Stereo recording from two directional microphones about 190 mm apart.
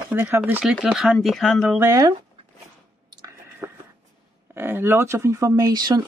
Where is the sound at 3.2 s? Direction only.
15° right (ahead or behind).